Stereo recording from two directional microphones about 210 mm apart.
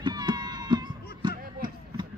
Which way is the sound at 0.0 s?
20° right (ahead or behind).